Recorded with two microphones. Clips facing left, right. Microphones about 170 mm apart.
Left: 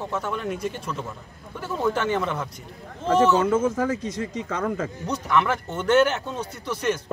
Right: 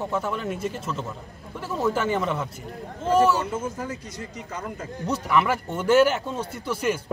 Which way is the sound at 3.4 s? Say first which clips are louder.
Left 8 dB; 90° left.